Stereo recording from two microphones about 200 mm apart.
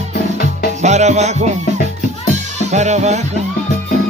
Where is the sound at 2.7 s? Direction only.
35° right (ahead or behind).